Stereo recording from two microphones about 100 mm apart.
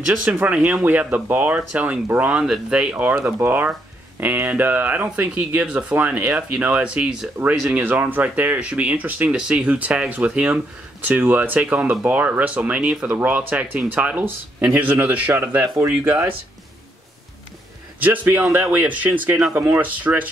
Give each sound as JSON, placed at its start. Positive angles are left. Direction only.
{"t": 0.0, "sound": "speech", "side_deg": -10}
{"t": 18.0, "sound": "speech", "side_deg": -15}